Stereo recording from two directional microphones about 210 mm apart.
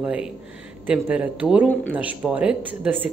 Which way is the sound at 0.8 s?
5° right (ahead or behind).